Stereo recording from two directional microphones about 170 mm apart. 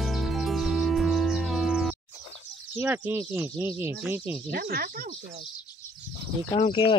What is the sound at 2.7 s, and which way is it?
Speech, 10° right (ahead or behind).